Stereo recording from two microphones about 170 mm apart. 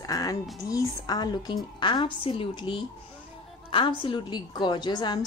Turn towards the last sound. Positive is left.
turn(degrees=25)  # may be behind; listen again after turning